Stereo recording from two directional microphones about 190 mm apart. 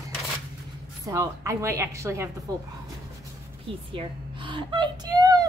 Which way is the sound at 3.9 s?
25° right (ahead or behind).